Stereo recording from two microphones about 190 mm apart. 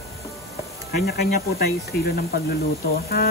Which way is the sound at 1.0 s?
60° left (ahead or behind).